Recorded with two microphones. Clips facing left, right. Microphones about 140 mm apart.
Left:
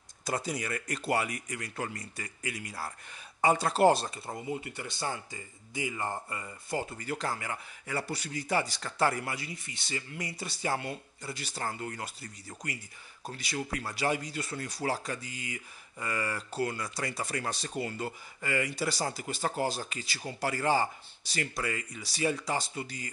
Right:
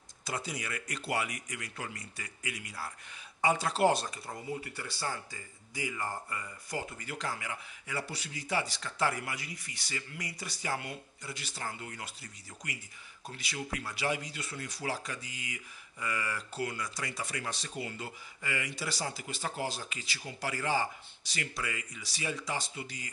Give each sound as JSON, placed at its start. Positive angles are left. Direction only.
{"t": 0.2, "sound": "speech", "side_deg": 40}
{"t": 7.1, "sound": "speech", "side_deg": 40}